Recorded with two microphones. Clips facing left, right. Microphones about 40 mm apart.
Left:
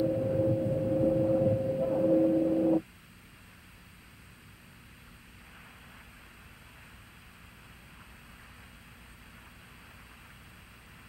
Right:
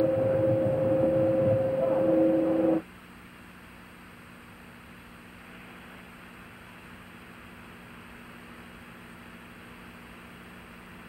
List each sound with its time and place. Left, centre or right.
0.0 s vehicle: right